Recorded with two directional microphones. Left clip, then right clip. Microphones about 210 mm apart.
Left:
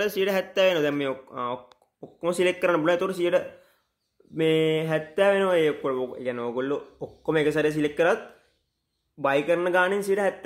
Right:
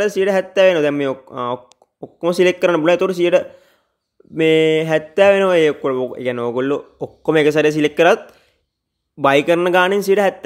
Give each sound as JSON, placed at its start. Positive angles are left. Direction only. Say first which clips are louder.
{"t": 0.0, "sound": "speech", "louder": "right 8 dB", "side_deg": -35}
{"t": 9.2, "sound": "speech", "louder": "right 9 dB", "side_deg": -45}